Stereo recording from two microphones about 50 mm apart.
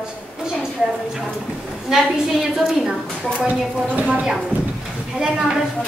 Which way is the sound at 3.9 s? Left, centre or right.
Right.